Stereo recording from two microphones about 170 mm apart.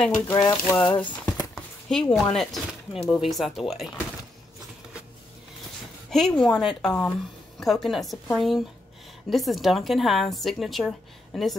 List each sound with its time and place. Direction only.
0.3 s speech: 20° left (ahead or behind)
1.5 s speech: 5° left (ahead or behind)
6.0 s speech: 5° left (ahead or behind)